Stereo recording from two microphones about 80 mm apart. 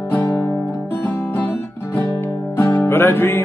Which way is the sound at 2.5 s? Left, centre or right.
Left.